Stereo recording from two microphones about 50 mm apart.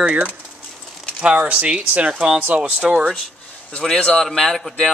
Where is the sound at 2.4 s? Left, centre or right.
Right.